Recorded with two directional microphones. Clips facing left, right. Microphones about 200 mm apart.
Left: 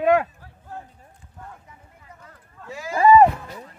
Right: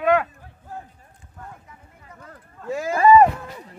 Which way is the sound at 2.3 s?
50° right (ahead or behind).